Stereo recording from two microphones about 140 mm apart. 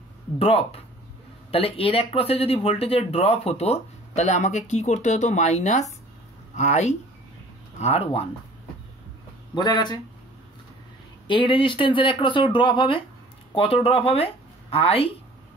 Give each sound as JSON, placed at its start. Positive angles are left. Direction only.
{"t": 0.4, "sound": "speech", "side_deg": 45}
{"t": 9.6, "sound": "speech", "side_deg": 30}
{"t": 11.2, "sound": "speech", "side_deg": 35}